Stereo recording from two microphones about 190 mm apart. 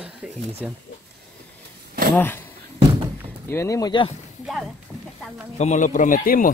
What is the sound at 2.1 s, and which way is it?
Speech, 10° left (ahead or behind).